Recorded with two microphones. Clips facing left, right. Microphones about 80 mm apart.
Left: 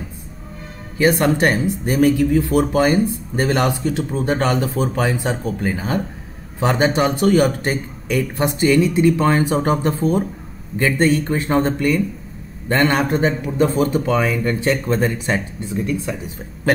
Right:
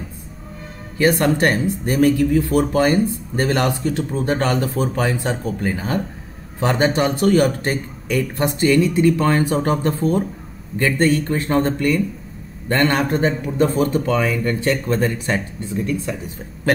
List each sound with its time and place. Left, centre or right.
0.9 s a man's voice: centre